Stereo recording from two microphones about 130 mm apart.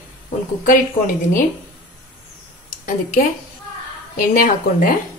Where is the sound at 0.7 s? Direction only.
85° left.